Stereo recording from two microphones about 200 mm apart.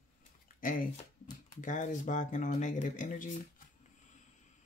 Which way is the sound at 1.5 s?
40° left (ahead or behind).